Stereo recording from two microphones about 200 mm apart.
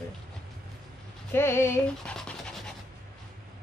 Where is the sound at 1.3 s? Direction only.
10° left (ahead or behind).